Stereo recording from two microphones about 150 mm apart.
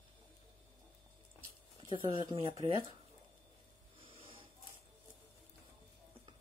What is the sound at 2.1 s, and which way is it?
Speech, 30° right (ahead or behind).